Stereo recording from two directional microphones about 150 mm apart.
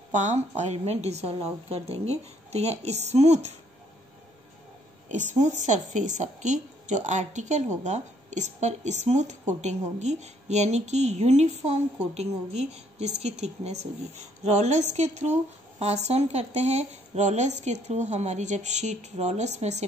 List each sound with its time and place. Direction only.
0.1 s a woman's voice: 50° right (ahead or behind)
5.0 s a woman's voice: 50° right (ahead or behind)